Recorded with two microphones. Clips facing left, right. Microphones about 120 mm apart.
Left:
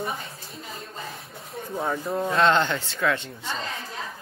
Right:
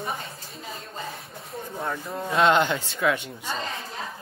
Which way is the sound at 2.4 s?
10° right (ahead or behind).